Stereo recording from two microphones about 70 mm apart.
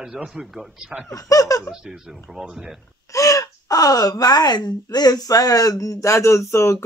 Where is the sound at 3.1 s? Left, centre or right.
Left.